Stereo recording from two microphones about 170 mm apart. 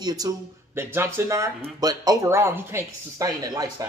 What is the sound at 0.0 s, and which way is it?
Speech, 20° right (ahead or behind).